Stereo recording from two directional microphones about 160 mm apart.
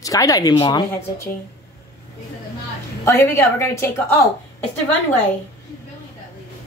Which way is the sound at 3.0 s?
20° left (ahead or behind).